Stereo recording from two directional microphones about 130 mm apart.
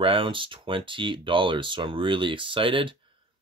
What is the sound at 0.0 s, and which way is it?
Speech, 40° right (ahead or behind).